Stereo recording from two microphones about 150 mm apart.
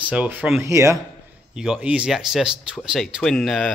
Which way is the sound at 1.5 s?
5° right (ahead or behind).